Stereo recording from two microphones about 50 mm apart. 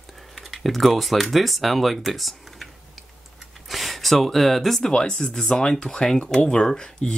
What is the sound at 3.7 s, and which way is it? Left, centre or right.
Speech, centre.